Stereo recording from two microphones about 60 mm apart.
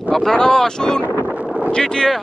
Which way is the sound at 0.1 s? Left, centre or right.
Centre.